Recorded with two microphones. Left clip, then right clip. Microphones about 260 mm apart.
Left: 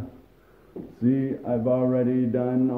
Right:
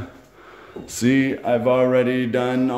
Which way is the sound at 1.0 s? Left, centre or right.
Right.